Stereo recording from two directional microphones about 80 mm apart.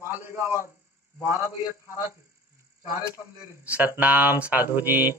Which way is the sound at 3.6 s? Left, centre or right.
Centre.